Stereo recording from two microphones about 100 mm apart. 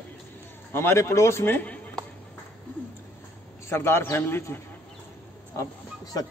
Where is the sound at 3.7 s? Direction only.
25° left (ahead or behind).